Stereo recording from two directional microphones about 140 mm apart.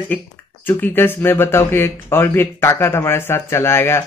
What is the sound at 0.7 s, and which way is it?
Speech, 15° left (ahead or behind).